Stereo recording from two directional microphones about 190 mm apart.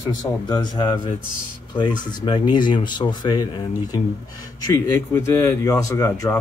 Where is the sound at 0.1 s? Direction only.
20° left (ahead or behind).